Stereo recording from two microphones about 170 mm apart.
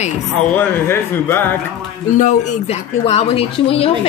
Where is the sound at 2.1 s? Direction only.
45° left (ahead or behind).